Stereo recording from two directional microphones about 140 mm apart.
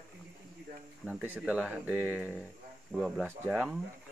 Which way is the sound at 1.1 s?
10° right (ahead or behind).